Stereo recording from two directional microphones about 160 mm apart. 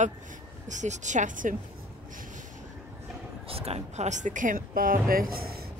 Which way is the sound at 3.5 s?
40° right (ahead or behind).